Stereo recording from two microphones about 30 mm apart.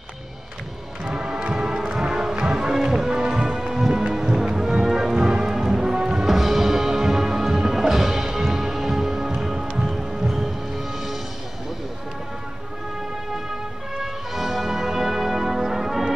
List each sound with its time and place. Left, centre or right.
1.0 s music: right
6.2 s music: centre
13.9 s music: centre